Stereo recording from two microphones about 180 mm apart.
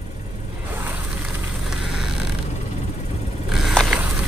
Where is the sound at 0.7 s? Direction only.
10° right (ahead or behind).